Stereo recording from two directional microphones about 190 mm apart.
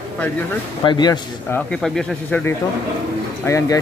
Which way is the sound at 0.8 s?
20° left (ahead or behind).